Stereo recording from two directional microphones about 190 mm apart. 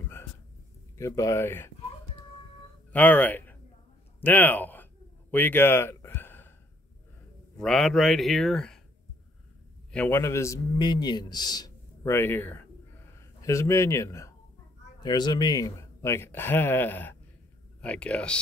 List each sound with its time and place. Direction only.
0.9 s a man's voice: 15° left (ahead or behind)
2.9 s speech: 10° left (ahead or behind)
5.3 s a sound: 10° left (ahead or behind)
7.5 s a man's voice: centre (ahead or behind)
9.9 s a man's voice: 10° left (ahead or behind)